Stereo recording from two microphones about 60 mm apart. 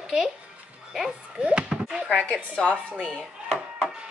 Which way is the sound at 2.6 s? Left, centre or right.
Centre.